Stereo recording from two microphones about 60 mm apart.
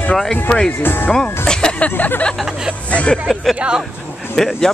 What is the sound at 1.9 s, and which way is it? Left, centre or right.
Speech, left.